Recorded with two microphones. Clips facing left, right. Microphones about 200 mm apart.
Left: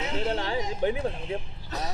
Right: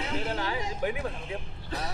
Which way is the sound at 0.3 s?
30° left (ahead or behind).